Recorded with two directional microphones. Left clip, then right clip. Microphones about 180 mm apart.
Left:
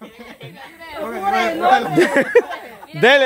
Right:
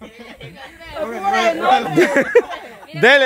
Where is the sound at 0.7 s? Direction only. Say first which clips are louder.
Right 1 dB; 25° right (ahead or behind).